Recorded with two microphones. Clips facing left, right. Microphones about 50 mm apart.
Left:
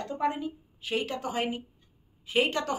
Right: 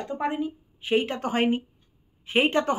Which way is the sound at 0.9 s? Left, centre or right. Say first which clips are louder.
Right 6 dB; right.